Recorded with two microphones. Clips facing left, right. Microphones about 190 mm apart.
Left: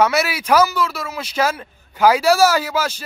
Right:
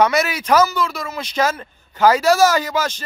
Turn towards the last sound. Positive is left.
turn(degrees=10)  # may be behind; listen again after turning